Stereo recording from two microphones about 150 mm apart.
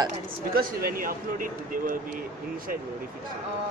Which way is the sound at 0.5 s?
75° right (ahead or behind).